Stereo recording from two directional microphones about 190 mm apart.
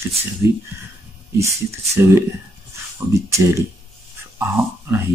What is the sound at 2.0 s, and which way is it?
Speech, 10° right (ahead or behind).